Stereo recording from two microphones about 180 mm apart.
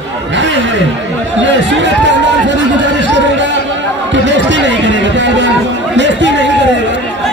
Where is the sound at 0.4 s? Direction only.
90° right.